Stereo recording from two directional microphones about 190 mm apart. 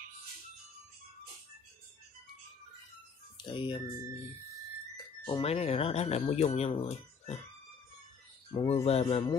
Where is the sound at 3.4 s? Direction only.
25° left (ahead or behind).